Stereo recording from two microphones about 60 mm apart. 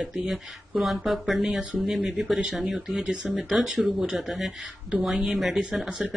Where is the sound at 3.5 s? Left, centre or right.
Centre.